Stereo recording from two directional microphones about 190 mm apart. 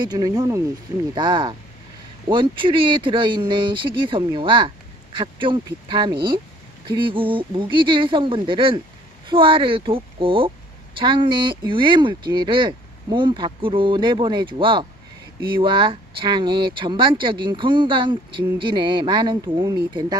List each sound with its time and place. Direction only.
0.0 s speech: 20° right (ahead or behind)